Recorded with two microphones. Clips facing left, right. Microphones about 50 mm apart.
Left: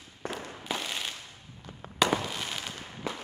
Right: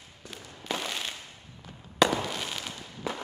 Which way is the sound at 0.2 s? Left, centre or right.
Left.